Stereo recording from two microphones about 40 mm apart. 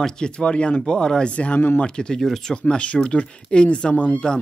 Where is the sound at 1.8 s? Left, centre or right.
Left.